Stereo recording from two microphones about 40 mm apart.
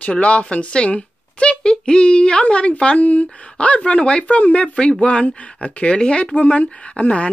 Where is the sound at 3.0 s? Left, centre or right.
Left.